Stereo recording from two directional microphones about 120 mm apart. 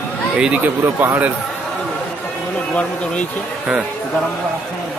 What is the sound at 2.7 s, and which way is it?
Speech, 10° left (ahead or behind).